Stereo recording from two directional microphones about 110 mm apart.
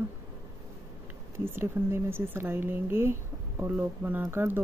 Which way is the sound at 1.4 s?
20° right (ahead or behind).